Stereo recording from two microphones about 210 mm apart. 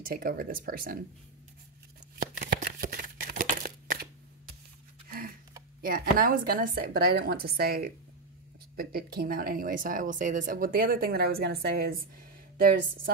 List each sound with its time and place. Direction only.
0.0 s speech: 45° right (ahead or behind)
2.1 s a sound: 45° right (ahead or behind)
5.8 s speech: 45° right (ahead or behind)